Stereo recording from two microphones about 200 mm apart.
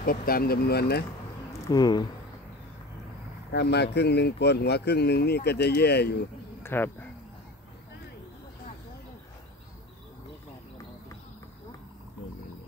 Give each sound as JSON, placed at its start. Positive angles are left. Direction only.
{"t": 0.0, "sound": "speech", "side_deg": 45}
{"t": 1.7, "sound": "speech", "side_deg": 20}
{"t": 3.5, "sound": "speech", "side_deg": 60}
{"t": 6.6, "sound": "speech", "side_deg": 10}